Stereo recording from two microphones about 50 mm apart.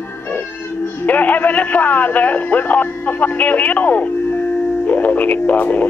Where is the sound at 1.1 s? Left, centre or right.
Left.